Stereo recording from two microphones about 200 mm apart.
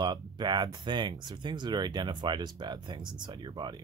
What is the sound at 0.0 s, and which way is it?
Speech, 20° right (ahead or behind).